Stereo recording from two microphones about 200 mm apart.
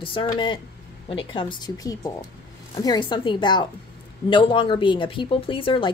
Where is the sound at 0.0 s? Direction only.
25° left (ahead or behind).